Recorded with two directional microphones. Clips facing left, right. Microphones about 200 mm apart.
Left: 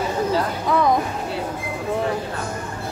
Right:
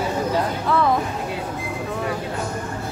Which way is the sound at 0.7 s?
15° left (ahead or behind).